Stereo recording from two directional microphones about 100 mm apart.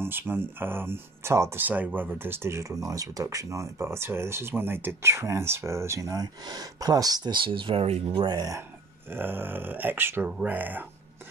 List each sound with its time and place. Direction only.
0.0 s speech: 20° right (ahead or behind); by 8.3 s 70° right (ahead or behind)
8.4 s speech: 30° right (ahead or behind)
9.1 s speech: 20° right (ahead or behind)